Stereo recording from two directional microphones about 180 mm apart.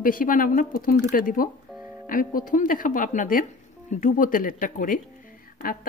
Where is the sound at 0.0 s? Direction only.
50° left (ahead or behind).